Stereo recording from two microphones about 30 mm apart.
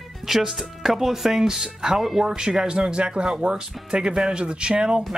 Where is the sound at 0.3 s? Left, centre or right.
Centre.